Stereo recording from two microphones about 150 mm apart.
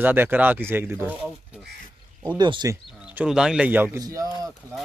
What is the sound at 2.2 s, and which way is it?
Speech, 30° right (ahead or behind).